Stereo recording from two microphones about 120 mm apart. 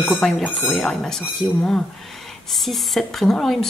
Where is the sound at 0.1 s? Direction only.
Centre (ahead or behind).